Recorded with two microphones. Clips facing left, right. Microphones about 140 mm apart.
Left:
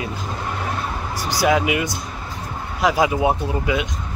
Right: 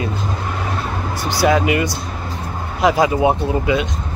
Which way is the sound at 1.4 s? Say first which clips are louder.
Right 3 dB; 10° left (ahead or behind).